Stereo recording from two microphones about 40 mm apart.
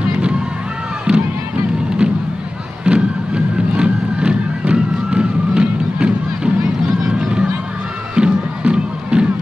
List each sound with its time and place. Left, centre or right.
1.1 s a sound: right
2.8 s music: right
7.0 s run: centre
8.1 s music: right